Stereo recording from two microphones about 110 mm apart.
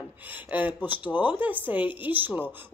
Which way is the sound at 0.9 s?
45° left (ahead or behind).